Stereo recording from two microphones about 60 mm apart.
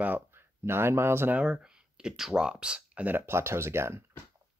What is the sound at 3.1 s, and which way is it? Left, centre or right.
Speech, right.